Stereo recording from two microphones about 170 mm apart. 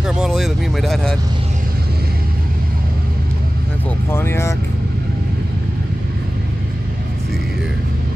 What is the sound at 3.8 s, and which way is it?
Speech, 15° left (ahead or behind).